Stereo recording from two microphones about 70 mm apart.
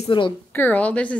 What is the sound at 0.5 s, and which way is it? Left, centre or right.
Speech, left.